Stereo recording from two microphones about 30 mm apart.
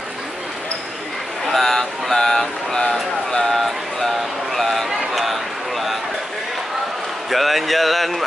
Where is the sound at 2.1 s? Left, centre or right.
Centre.